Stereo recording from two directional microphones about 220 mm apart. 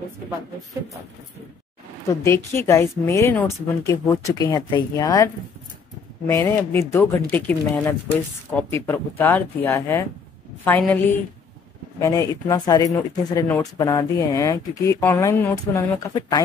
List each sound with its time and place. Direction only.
2.2 s speech: 10° left (ahead or behind)